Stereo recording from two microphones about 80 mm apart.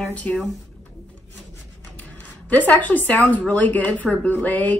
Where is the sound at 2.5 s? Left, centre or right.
Left.